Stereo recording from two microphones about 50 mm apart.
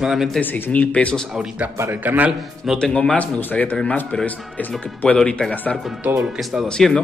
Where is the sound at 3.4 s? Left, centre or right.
Left.